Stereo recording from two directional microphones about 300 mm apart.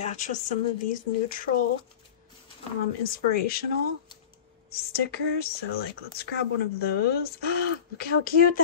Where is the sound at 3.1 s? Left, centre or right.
Left.